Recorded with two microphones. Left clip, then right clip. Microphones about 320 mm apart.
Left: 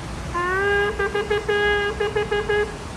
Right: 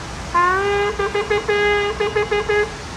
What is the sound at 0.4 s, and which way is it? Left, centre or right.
Vehicle, centre.